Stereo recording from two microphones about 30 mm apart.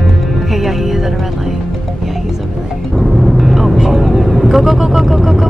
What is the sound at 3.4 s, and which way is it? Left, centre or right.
Vehicle, centre.